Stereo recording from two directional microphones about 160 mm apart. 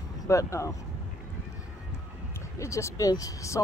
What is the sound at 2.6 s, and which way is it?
Speech, 20° left (ahead or behind).